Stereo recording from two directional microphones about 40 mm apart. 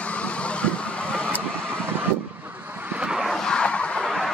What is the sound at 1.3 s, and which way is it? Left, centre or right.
Vehicle, right.